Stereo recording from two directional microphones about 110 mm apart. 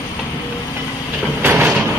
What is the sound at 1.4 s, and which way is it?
Sliding door, 15° right (ahead or behind).